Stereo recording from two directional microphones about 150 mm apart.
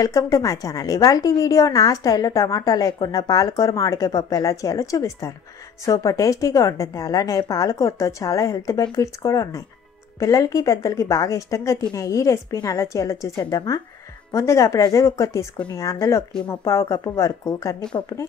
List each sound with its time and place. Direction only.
0.0 s a woman's voice: 20° left (ahead or behind)